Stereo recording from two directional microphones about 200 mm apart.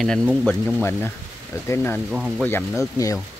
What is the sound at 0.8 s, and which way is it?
Speech, 10° left (ahead or behind).